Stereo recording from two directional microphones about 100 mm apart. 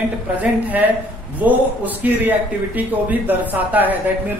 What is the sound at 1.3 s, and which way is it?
A man's voice, 15° right (ahead or behind).